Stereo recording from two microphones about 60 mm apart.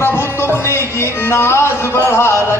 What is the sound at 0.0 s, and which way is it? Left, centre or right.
Music, left.